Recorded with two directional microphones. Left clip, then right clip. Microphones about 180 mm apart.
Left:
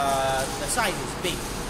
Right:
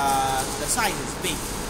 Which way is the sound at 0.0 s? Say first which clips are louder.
Right 1 dB; 15° left (ahead or behind).